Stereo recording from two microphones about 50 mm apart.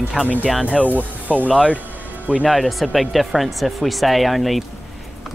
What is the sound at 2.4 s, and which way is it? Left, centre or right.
Speech, centre.